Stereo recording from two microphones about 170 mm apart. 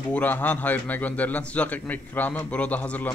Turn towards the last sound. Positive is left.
turn(degrees=10)  # may be behind; listen again after turning